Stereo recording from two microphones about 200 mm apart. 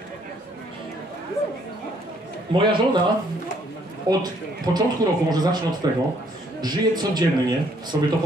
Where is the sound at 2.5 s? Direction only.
25° right (ahead or behind).